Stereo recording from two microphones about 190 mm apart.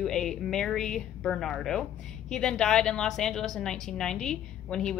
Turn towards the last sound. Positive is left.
turn(degrees=5)  # may be behind; listen again after turning